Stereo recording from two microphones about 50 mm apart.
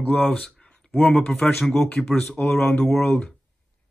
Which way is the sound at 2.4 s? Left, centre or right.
Left.